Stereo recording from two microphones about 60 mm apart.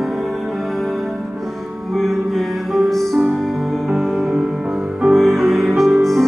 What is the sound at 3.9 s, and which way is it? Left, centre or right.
Music, centre.